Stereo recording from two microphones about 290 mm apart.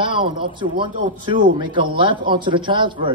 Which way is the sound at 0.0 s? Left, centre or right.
Centre.